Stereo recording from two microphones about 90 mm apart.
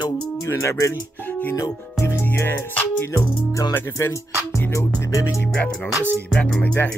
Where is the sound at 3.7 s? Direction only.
30° left (ahead or behind).